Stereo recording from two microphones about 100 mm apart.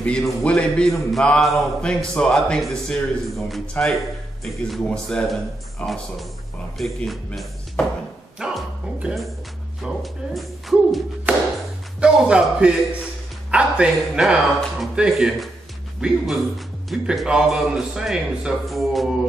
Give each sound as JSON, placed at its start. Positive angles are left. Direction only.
{"t": 0.0, "sound": "a man's voice", "side_deg": 10}
{"t": 4.6, "sound": "speech", "side_deg": 5}
{"t": 8.4, "sound": "music", "side_deg": -5}
{"t": 9.8, "sound": "speech", "side_deg": 0}
{"t": 11.3, "sound": "tap", "side_deg": -15}
{"t": 12.0, "sound": "speech", "side_deg": -10}